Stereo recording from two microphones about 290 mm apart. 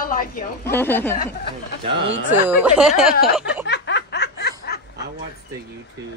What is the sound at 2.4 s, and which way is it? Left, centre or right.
Speech, centre.